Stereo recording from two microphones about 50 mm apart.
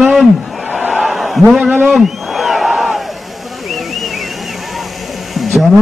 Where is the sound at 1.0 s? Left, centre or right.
Centre.